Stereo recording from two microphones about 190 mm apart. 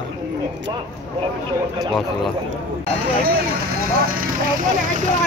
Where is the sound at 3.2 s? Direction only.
55° right (ahead or behind).